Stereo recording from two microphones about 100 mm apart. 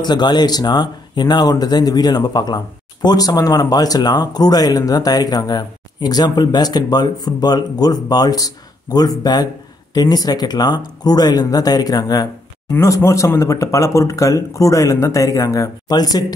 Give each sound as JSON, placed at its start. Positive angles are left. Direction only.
{"t": 0.0, "sound": "speech", "side_deg": 45}